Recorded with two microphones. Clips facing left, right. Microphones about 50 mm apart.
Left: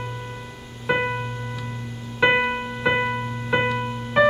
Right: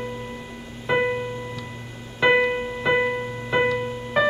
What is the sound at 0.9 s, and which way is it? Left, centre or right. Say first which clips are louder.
Music: right 1 dB; centre.